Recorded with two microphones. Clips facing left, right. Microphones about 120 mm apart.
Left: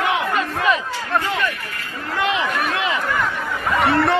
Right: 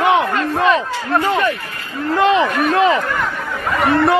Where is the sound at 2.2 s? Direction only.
35° right (ahead or behind).